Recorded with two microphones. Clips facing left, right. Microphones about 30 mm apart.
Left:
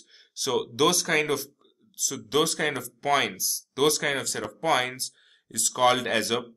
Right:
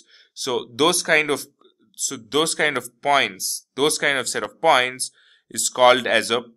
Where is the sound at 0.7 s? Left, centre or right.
Right.